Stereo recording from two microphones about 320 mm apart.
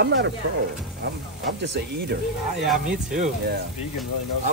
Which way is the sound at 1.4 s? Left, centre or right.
Right.